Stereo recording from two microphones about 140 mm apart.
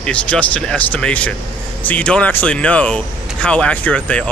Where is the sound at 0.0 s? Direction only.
10° left (ahead or behind).